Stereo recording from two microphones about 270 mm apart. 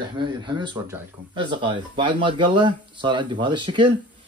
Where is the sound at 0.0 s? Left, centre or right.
Centre.